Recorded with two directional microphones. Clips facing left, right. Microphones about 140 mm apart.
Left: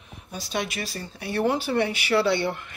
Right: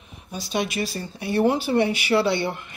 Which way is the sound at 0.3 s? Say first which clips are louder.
Right 3 dB; 20° right (ahead or behind).